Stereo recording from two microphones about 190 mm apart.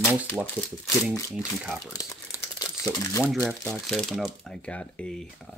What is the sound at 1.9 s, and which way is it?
Crumpling, 15° left (ahead or behind).